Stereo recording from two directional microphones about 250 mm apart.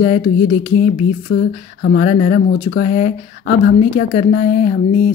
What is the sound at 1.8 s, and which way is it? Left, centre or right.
A woman's voice, left.